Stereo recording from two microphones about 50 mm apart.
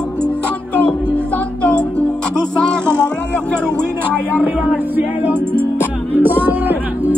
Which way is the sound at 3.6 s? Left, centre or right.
Right.